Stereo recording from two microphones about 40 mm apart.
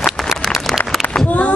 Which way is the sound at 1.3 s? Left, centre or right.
Left.